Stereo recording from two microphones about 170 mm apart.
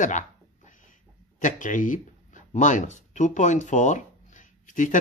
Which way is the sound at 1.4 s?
50° left (ahead or behind).